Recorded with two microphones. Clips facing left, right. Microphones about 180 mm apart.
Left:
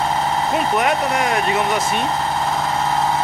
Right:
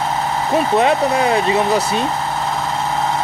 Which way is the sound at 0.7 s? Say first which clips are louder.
Right 6 dB; 30° right (ahead or behind).